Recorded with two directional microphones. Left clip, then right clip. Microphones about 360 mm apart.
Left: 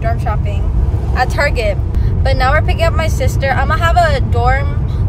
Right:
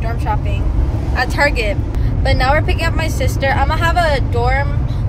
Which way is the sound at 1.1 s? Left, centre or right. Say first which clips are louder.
Left 1 dB; centre.